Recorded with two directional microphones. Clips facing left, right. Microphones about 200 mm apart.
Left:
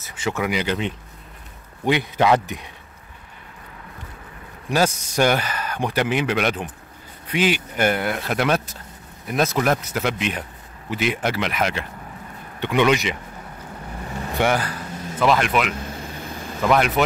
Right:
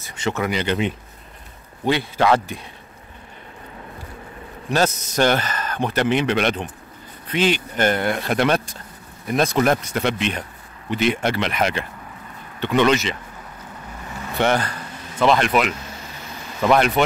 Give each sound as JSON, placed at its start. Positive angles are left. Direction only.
{"t": 0.0, "sound": "speech", "side_deg": 5}
{"t": 1.9, "sound": "speech", "side_deg": 15}
{"t": 4.6, "sound": "speech", "side_deg": 10}
{"t": 12.5, "sound": "speech", "side_deg": 10}
{"t": 14.3, "sound": "speech", "side_deg": 10}
{"t": 15.7, "sound": "a sound", "side_deg": 55}
{"t": 16.6, "sound": "speech", "side_deg": 0}